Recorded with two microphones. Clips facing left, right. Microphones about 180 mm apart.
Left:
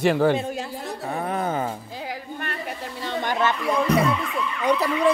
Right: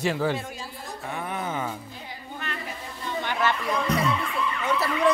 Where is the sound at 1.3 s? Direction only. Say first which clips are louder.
Left 5 dB; 35° left (ahead or behind).